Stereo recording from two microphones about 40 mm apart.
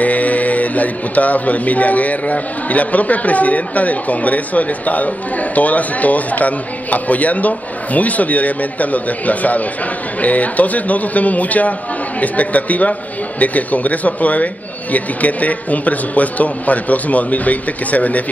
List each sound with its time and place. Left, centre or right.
0.0 s speech: left